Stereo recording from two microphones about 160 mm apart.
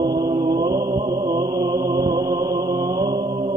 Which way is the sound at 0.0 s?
25° right (ahead or behind).